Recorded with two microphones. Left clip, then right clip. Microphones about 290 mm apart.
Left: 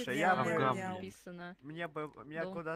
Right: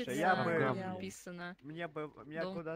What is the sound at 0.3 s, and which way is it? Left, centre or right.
Speech, centre.